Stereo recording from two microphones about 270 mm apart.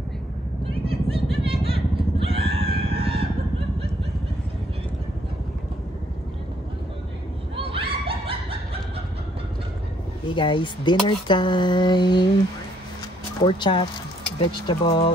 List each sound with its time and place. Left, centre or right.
0.7 s vehicle: right
2.9 s fowl: right
7.5 s snicker: centre
10.2 s speech: centre
13.4 s speech: centre